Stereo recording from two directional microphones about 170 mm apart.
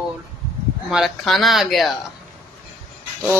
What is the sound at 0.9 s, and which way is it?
Speech, centre (ahead or behind).